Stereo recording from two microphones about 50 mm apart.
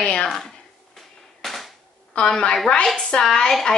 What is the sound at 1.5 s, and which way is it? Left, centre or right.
Cap gun, centre.